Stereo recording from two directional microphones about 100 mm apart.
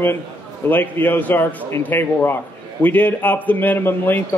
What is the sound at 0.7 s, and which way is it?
A man's voice, 20° left (ahead or behind).